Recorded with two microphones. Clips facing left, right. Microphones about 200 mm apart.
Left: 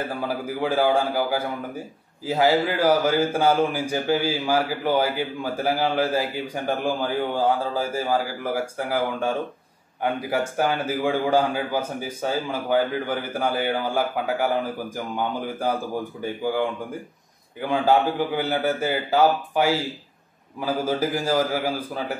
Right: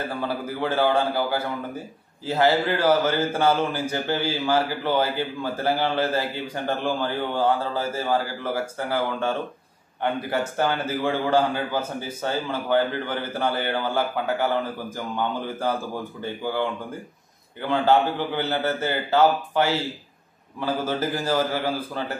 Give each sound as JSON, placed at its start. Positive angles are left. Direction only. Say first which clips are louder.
{"t": 0.3, "sound": "a man's voice", "louder": "left 3 dB", "side_deg": 10}
{"t": 10.6, "sound": "a man's voice", "louder": "left 1 dB", "side_deg": 10}